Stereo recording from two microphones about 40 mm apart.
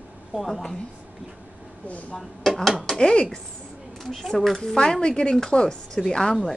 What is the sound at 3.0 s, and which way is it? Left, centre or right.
Speech, left.